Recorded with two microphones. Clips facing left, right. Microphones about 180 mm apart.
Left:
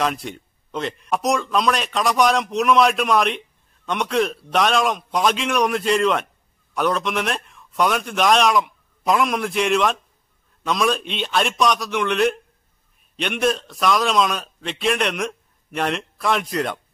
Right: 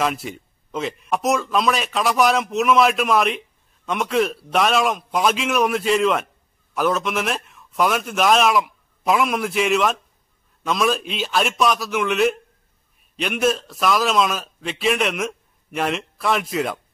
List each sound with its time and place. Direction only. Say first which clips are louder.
0.0 s a man's voice: even; 5° right (ahead or behind)